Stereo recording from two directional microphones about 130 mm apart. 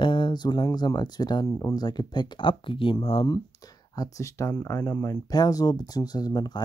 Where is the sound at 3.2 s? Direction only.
30° left (ahead or behind).